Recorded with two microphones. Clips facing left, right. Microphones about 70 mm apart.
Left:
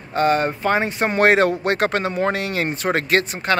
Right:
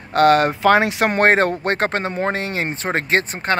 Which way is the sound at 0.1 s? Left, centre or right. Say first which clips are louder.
Right 4 dB; right.